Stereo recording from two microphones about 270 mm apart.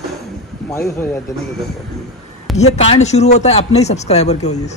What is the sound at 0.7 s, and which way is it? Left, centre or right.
Speech, centre.